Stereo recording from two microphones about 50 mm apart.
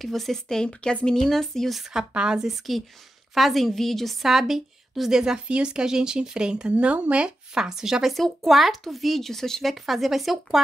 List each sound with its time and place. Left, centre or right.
0.0 s speech: centre
1.8 s a woman's voice: centre
7.5 s a woman's voice: centre
8.1 s speech: centre